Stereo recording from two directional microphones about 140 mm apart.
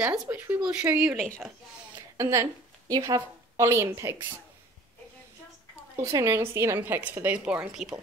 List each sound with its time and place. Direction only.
0.3 s a woman's voice: 15° right (ahead or behind)
2.0 s a sound: 25° right (ahead or behind)
2.9 s a woman's voice: 25° right (ahead or behind)
6.0 s a woman's voice: 25° right (ahead or behind); by 7.9 s 5° right (ahead or behind)